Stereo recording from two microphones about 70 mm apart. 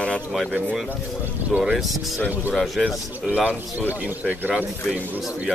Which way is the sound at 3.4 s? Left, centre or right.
Right.